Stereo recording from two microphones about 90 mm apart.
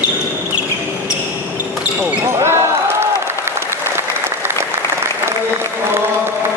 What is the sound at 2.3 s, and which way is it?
Basketball bounce, 30° right (ahead or behind).